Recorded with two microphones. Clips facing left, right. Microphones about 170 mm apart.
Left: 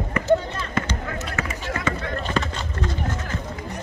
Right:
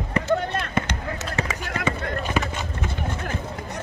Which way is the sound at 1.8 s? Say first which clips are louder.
Right 2 dB; 10° right (ahead or behind).